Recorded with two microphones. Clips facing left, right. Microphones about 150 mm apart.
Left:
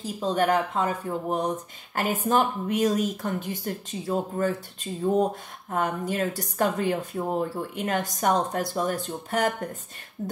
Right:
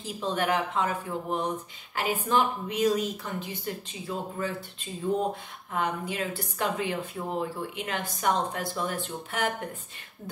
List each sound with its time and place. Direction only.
0.0 s a woman's voice: 40° left (ahead or behind)